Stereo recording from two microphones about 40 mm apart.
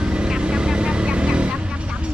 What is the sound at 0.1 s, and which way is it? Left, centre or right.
Vehicle, right.